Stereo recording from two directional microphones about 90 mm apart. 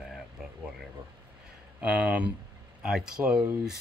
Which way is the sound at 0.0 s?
5° right (ahead or behind).